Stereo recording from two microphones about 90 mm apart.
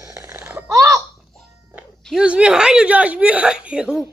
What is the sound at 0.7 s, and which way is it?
Laughter, 35° right (ahead or behind).